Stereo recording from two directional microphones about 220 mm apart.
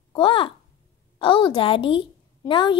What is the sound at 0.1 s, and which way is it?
A child's voice, 25° left (ahead or behind).